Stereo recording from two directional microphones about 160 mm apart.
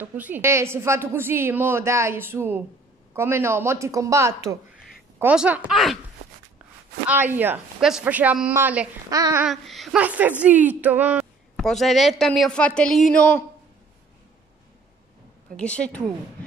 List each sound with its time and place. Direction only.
0.0 s a woman's voice: 10° right (ahead or behind)
5.2 s a woman's voice: 5° right (ahead or behind)
7.1 s a woman's voice: 10° right (ahead or behind)
9.1 s babbling: 20° right (ahead or behind)
9.4 s a woman's voice: centre (ahead or behind)
15.5 s a woman's voice: 5° left (ahead or behind)